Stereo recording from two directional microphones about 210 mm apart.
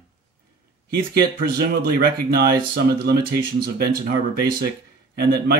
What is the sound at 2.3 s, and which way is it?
Speech, 45° right (ahead or behind).